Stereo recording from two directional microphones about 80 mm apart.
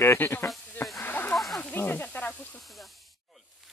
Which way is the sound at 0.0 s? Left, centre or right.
Left.